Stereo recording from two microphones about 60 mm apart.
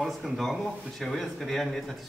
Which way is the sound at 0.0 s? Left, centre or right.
Centre.